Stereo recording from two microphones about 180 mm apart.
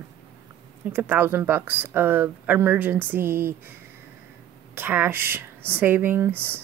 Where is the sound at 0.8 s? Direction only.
10° right (ahead or behind).